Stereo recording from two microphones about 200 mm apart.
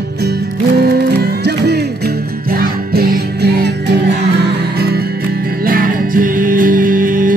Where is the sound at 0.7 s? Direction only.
55° right (ahead or behind).